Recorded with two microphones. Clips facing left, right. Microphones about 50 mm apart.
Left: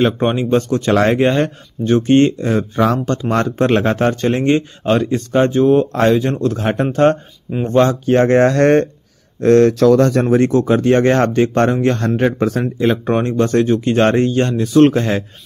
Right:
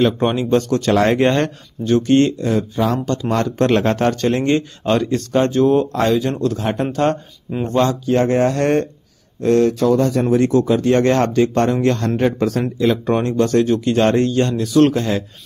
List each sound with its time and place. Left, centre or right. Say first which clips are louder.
0.2 s speech: left 1 dB; centre
1.0 s speech: left 1 dB; centre
1.9 s speech: left 2 dB; left
3.5 s speech: even; centre
5.9 s speech: left 3 dB; left
8.4 s speech: left 5 dB; left
9.8 s speech: left 4 dB; left
10.3 s speech: left 2 dB; left